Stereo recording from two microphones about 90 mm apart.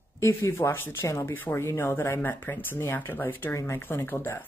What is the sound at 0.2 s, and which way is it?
Speech, 30° left (ahead or behind).